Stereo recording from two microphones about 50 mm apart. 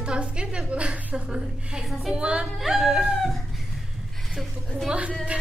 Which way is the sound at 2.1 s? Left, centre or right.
Right.